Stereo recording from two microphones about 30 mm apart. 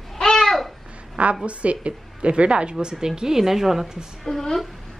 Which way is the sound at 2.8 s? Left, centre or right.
Right.